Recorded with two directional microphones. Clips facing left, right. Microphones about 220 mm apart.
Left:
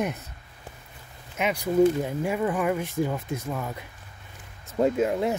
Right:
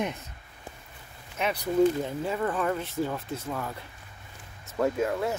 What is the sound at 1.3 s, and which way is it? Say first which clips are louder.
Speech: left 3 dB; 15° left (ahead or behind).